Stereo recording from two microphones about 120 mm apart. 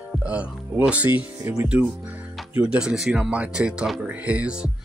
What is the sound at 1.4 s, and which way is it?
Speech, 30° right (ahead or behind).